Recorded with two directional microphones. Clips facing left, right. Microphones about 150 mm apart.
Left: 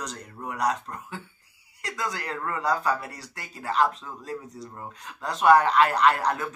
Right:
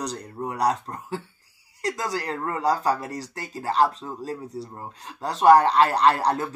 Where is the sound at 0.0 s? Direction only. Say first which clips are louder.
Right 6 dB; 35° right (ahead or behind).